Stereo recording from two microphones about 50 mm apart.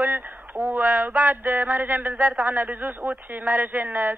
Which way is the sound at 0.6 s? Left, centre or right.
Right.